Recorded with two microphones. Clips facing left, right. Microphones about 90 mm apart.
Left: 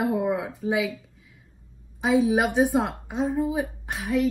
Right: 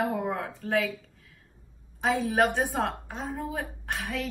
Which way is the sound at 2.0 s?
5° left (ahead or behind).